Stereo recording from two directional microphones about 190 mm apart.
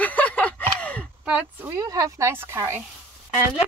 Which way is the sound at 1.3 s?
10° right (ahead or behind).